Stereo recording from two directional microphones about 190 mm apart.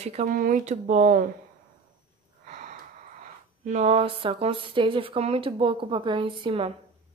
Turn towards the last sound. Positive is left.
turn(degrees=-25)  # may be behind; listen again after turning